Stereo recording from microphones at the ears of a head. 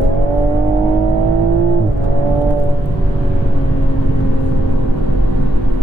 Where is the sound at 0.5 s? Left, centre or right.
Right.